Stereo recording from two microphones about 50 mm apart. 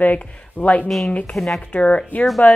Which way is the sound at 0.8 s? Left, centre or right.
Centre.